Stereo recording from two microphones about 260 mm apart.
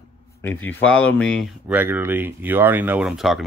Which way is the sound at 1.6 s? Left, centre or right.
Centre.